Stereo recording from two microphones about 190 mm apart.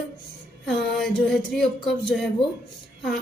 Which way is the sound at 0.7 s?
Centre (ahead or behind).